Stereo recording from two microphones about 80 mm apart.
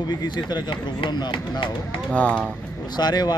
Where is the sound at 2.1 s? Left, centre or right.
Centre.